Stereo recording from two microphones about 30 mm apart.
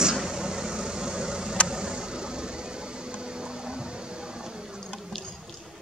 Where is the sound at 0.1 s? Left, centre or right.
Right.